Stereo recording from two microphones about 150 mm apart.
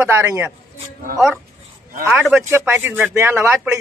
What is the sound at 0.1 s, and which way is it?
Speech, 15° right (ahead or behind).